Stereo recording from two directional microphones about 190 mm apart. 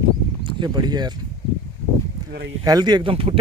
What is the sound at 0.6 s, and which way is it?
Speech, 20° right (ahead or behind).